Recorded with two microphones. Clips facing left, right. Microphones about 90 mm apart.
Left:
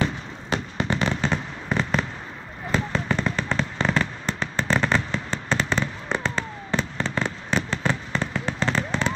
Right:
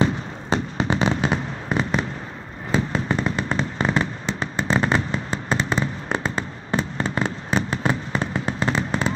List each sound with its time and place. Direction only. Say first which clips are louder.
0.0 s fireworks: right 5 dB; 25° right (ahead or behind); by 2.0 s 5° right (ahead or behind)
2.7 s fireworks: right 2 dB; 20° right (ahead or behind)